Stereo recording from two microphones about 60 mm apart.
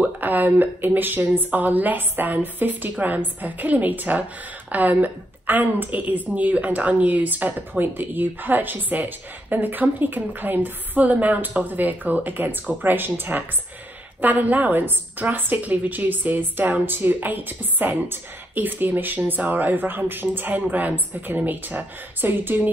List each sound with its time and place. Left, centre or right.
0.0 s a woman's voice: right